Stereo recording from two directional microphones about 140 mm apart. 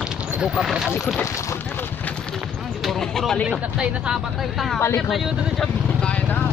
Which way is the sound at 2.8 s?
5° left (ahead or behind).